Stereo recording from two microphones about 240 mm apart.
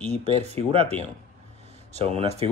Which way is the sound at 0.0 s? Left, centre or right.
Right.